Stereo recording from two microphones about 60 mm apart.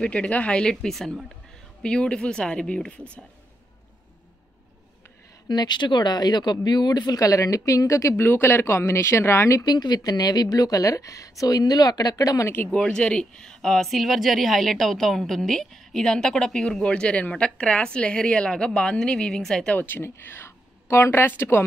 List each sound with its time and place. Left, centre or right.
0.0 s speech: left
0.8 s a woman's voice: centre
5.8 s speech: left
7.0 s speech: left
8.2 s speech: left
9.6 s speech: left
12.7 s speech: centre
19.7 s speech: left